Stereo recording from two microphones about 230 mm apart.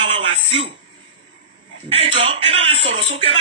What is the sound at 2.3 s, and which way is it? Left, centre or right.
Speech, right.